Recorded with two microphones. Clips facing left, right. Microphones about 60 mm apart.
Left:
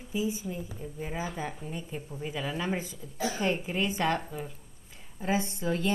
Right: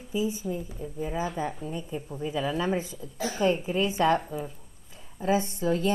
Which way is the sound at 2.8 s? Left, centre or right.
Right.